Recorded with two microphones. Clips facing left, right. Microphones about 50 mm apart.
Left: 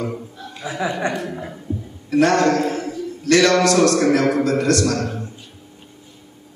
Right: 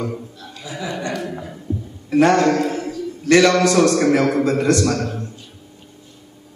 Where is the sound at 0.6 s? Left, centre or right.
Left.